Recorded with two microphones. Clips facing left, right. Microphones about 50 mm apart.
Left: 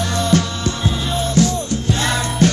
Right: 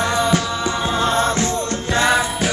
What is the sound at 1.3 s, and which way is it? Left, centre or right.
Music, right.